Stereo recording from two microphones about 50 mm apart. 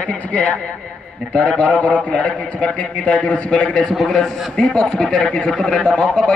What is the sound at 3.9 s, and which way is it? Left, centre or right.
A man's voice, centre.